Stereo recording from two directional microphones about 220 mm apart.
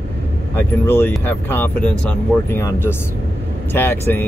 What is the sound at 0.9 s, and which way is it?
Speech, 10° left (ahead or behind).